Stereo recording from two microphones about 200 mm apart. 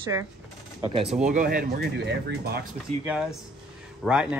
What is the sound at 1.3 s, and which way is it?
Speech, 45° right (ahead or behind).